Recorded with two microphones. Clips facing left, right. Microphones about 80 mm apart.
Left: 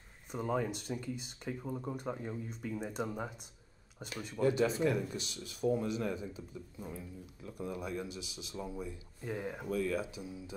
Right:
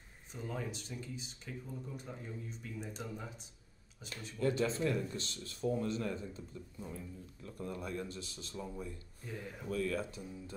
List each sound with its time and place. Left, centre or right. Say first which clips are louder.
0.3 s speech: left 7 dB; left
4.4 s speech: left 3 dB; centre
9.2 s speech: left 7 dB; left
9.7 s speech: left 1 dB; centre